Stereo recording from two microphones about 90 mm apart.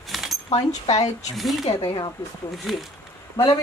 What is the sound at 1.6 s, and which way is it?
Speech, 40° left (ahead or behind).